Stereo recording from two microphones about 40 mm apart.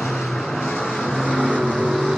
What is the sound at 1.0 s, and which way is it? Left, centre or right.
Vehicle, centre.